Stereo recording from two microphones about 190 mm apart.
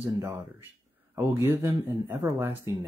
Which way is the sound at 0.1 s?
15° right (ahead or behind).